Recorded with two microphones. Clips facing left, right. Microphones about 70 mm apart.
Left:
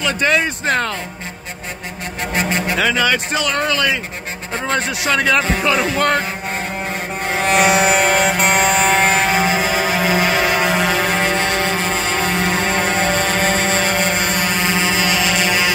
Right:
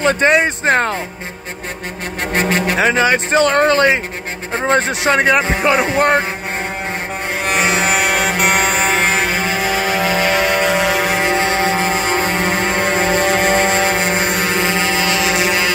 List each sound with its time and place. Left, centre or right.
0.0 s speech: right
0.3 s a man's voice: right
2.7 s a man's voice: right
7.9 s music: centre
11.2 s music: centre
14.3 s a sound: centre
15.2 s music: centre